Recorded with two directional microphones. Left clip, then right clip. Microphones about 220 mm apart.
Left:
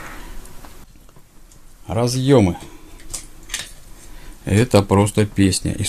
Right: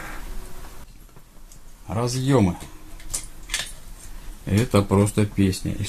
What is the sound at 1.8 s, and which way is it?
Speech, 45° left (ahead or behind).